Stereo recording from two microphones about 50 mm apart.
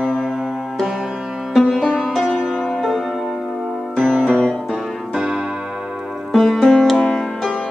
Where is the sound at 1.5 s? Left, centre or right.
Centre.